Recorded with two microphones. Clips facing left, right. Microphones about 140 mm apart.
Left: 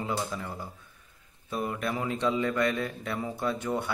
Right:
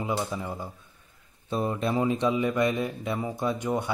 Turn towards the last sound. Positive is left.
turn(degrees=-20)  # may be behind; listen again after turning